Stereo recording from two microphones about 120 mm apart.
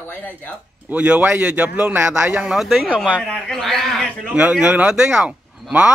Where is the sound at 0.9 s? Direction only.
10° right (ahead or behind).